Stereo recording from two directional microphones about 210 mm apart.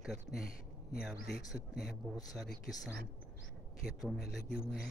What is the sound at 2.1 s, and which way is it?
Speech, 15° left (ahead or behind).